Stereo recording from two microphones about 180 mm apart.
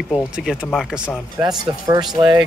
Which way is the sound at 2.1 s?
25° right (ahead or behind).